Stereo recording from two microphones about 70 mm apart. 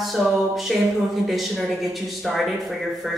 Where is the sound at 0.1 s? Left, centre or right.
Centre.